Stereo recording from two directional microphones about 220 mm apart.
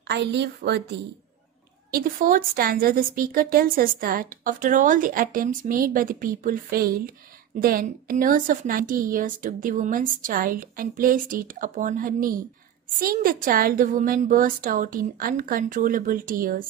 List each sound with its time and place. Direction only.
0.1 s a woman's voice: 50° right (ahead or behind)
1.9 s a woman's voice: 40° right (ahead or behind)